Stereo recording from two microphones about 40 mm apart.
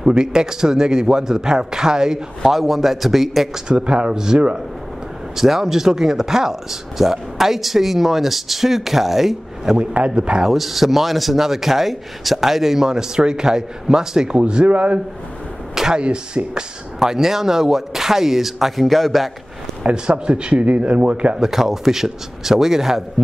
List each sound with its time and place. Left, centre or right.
0.0 s speech: centre
2.5 s a man's voice: centre
3.6 s speech: right; by 9.8 s centre
9.8 s speech: right
10.5 s speech: centre; by 15.0 s right
15.7 s a sound: centre
16.0 s speech: right
17.0 s speech: centre
19.8 s speech: right
21.4 s speech: centre